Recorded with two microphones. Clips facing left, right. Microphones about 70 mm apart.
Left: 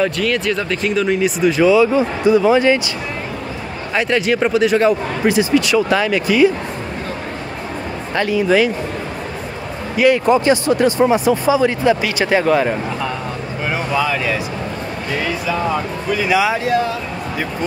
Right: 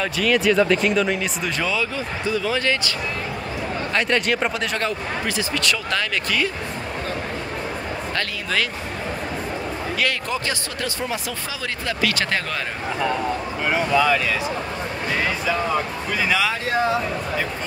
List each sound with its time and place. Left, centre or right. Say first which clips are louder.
0.0 s speech: left 2 dB; centre
1.9 s speech: left 11 dB; left
3.9 s speech: left 5 dB; centre
8.2 s speech: left 12 dB; centre
9.9 s speech: left 14 dB; centre
16.3 s speech: left 6 dB; centre